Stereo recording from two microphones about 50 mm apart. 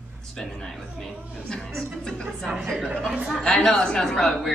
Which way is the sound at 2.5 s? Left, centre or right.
Centre.